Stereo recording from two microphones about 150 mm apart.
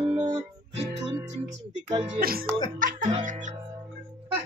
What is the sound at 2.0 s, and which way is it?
Speech, 75° right (ahead or behind).